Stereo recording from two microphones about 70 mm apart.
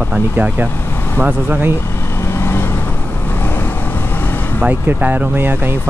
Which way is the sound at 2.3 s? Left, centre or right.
Left.